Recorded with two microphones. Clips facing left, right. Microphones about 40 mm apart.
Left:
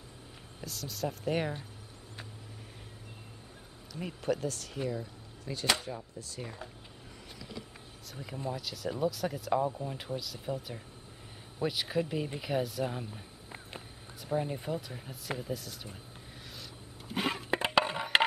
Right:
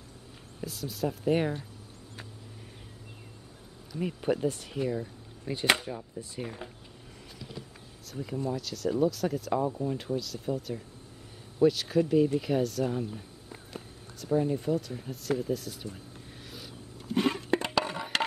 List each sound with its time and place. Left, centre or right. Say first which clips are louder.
0.6 s speech: right 4 dB; centre
3.9 s speech: right 4 dB; centre
5.0 s a sound: right 4 dB; right
5.8 s speech: right 3 dB; centre
8.1 s speech: right 5 dB; centre
16.4 s vehicle: right 2 dB; centre
17.1 s a sound: right 5 dB; centre